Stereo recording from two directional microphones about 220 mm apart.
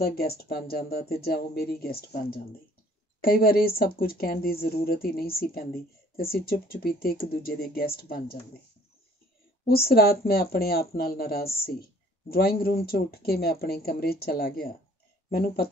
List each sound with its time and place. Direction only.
0.0 s speech: 45° left (ahead or behind)
9.7 s speech: 45° left (ahead or behind)